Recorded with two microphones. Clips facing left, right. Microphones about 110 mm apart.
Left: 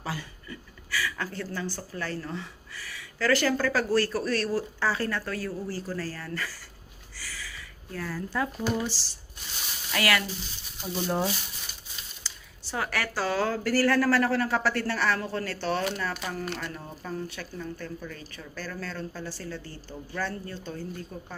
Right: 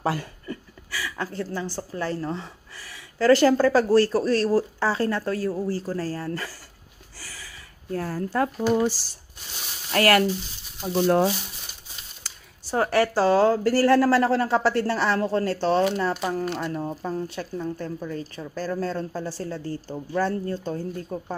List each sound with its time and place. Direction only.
0.0 s chuckle: 60° right (ahead or behind)
0.9 s a woman's voice: 25° right (ahead or behind); by 10.2 s 45° right (ahead or behind)
11.0 s speech: 80° right
12.2 s a sound: 55° right (ahead or behind)
12.7 s a woman's voice: 35° right (ahead or behind)